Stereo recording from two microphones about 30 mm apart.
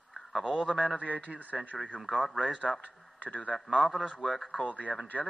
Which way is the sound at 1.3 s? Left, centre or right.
Right.